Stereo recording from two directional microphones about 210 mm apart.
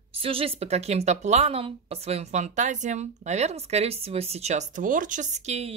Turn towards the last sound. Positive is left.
turn(degrees=-30)  # may be behind; listen again after turning